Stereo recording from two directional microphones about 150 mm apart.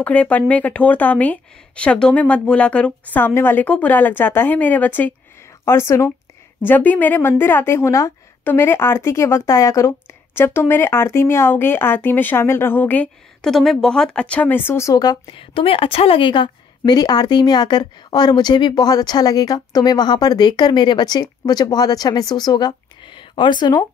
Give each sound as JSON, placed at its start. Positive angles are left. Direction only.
{"t": 0.0, "sound": "a woman's voice", "side_deg": 10}